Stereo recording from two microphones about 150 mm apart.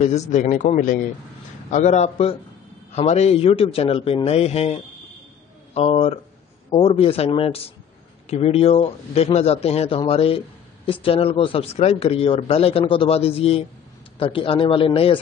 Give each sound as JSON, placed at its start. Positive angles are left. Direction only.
{"t": 0.0, "sound": "speech", "side_deg": 50}
{"t": 5.8, "sound": "a man's voice", "side_deg": 45}